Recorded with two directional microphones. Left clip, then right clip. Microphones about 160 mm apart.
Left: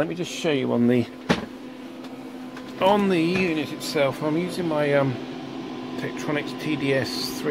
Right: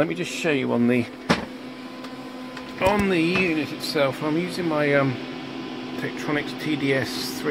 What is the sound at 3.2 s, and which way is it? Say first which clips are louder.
Speech: right 1 dB; 15° left (ahead or behind).